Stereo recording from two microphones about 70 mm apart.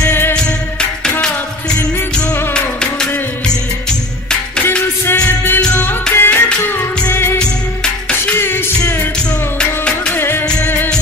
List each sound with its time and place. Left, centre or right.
0.0 s music: left
0.3 s music: centre
2.5 s music: centre
5.0 s music: left
7.3 s music: centre
8.4 s music: left
9.6 s music: centre
10.1 s music: left